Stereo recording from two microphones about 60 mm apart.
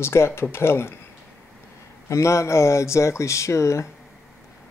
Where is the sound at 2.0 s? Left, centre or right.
Left.